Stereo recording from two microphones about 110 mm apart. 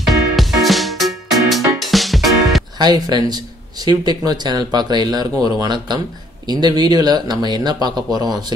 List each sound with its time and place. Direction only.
0.0 s music: centre (ahead or behind)
2.8 s speech: 40° right (ahead or behind)